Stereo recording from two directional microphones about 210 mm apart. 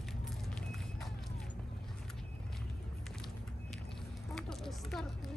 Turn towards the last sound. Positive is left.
turn(degrees=0)  # may be behind; listen again after turning